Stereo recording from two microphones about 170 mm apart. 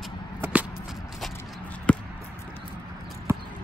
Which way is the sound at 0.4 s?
10° right (ahead or behind).